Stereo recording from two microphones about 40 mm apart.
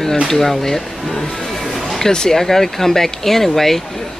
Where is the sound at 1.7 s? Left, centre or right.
Centre.